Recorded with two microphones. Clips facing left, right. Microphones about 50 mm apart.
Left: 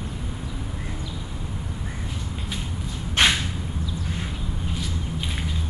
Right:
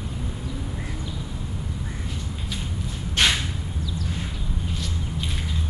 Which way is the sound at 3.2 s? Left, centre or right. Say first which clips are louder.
Left 2 dB; left.